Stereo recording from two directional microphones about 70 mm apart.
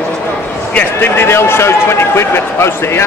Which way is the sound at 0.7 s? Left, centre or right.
Left.